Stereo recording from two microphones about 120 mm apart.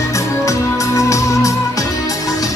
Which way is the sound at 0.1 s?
25° left (ahead or behind).